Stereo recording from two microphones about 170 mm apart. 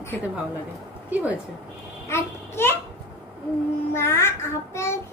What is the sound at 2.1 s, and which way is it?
Babbling, 15° left (ahead or behind).